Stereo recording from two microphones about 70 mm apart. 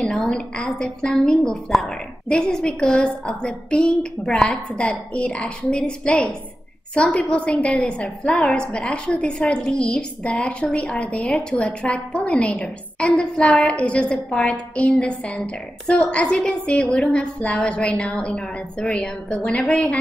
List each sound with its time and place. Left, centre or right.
0.0 s a woman's voice: centre
8.3 s a woman's voice: centre
8.5 s a woman's voice: centre
13.5 s a woman's voice: centre
13.7 s a woman's voice: centre
16.8 s a woman's voice: centre
17.1 s a woman's voice: centre